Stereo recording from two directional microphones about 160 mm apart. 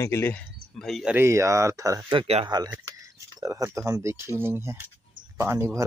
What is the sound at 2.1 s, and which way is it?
Speech, 40° right (ahead or behind).